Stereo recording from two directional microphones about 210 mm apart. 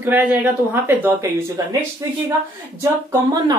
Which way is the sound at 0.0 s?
10° right (ahead or behind).